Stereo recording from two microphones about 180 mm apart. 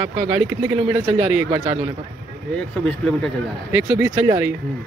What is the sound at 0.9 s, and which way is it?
Speech, 20° right (ahead or behind).